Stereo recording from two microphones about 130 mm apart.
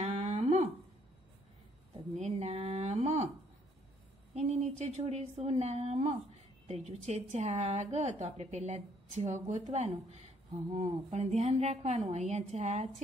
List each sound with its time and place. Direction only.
0.0 s humming: 50° right (ahead or behind)
2.1 s a sound: 50° right (ahead or behind)
4.4 s a woman's voice: 60° right (ahead or behind)